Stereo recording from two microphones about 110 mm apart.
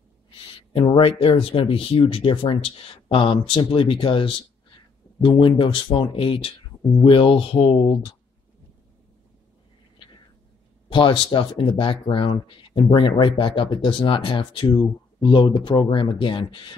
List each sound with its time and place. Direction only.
0.5 s speech: 50° left (ahead or behind)
10.9 s speech: 45° left (ahead or behind)